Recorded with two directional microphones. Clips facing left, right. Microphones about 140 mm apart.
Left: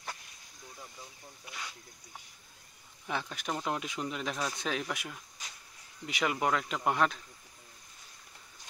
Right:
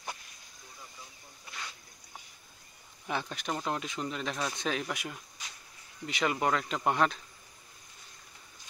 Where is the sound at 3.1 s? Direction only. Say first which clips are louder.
Right 1 dB; centre (ahead or behind).